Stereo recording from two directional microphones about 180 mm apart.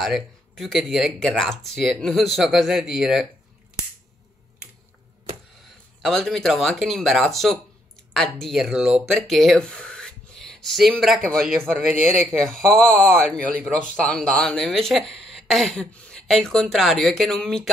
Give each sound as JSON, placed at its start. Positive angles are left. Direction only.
{"t": 0.0, "sound": "speech", "side_deg": 0}
{"t": 6.0, "sound": "speech", "side_deg": 0}
{"t": 13.5, "sound": "speech", "side_deg": -50}
{"t": 13.9, "sound": "speech", "side_deg": 5}